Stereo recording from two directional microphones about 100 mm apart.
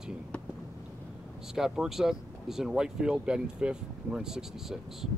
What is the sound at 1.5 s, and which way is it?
Speech, 5° right (ahead or behind).